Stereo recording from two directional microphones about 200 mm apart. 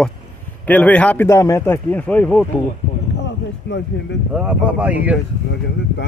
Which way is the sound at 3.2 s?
60° left (ahead or behind).